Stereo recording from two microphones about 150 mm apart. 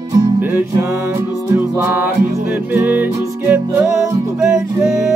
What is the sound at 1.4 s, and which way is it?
Music, 15° right (ahead or behind).